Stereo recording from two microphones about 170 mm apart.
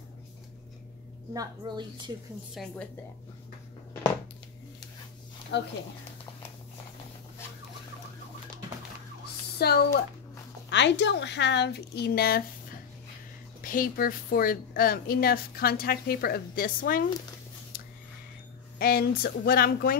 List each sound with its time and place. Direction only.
1.3 s a woman's voice: 25° right (ahead or behind)
2.5 s a woman's voice: centre (ahead or behind)
5.5 s a woman's voice: 90° left
9.6 s speech: 70° left (ahead or behind)
10.7 s a woman's voice: 90° left; by 12.4 s 65° left (ahead or behind)
13.6 s speech: 55° left (ahead or behind)
18.8 s speech: 65° left (ahead or behind)